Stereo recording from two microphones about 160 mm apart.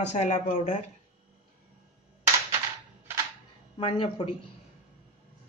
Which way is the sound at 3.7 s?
30° left (ahead or behind).